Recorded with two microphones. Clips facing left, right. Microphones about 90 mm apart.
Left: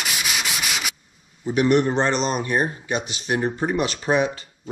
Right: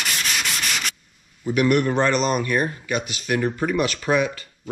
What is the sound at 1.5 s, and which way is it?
Speech, 55° right (ahead or behind).